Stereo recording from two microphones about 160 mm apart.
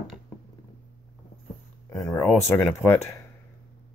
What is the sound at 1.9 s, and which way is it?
Speech, 20° left (ahead or behind).